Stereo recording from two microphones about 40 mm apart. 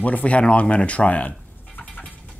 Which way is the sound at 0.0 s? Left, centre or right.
Left.